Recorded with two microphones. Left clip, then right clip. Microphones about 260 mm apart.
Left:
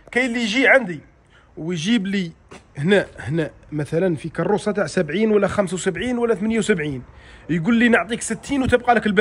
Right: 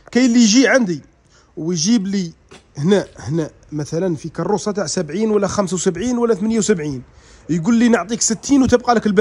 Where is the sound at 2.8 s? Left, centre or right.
Centre.